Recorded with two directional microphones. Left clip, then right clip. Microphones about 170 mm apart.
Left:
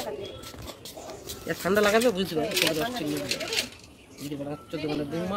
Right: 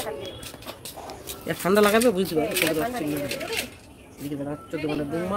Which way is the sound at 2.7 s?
20° right (ahead or behind).